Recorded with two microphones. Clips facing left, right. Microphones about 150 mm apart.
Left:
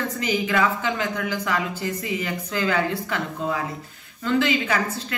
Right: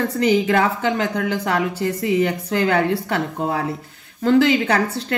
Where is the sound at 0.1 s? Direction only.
80° right.